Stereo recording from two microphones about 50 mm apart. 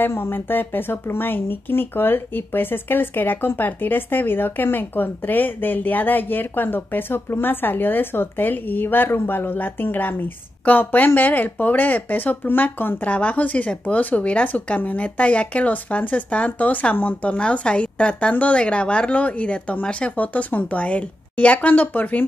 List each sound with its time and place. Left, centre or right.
0.1 s speech: left